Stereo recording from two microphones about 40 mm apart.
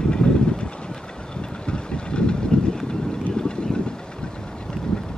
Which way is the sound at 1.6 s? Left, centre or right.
Left.